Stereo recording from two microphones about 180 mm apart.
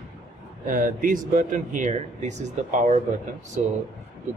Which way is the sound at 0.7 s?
50° right (ahead or behind).